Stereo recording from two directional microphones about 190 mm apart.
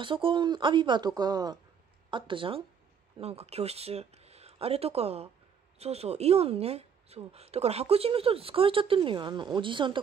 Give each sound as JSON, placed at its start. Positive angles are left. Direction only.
{"t": 0.0, "sound": "a woman's voice", "side_deg": -25}